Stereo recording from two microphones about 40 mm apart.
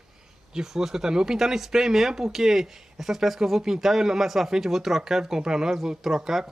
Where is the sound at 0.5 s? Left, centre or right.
Centre.